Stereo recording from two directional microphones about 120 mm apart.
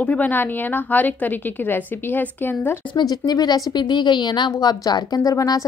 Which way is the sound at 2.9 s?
35° left (ahead or behind).